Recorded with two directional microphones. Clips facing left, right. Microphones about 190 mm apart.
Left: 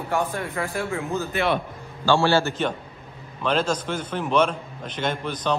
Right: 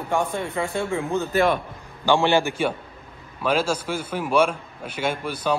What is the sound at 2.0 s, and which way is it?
A man's voice, 15° right (ahead or behind).